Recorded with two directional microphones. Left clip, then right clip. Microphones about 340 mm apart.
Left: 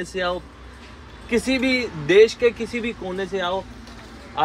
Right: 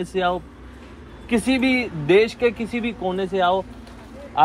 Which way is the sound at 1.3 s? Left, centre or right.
Right.